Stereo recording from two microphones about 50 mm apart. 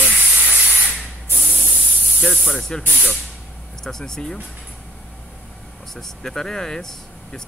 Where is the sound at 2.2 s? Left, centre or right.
Centre.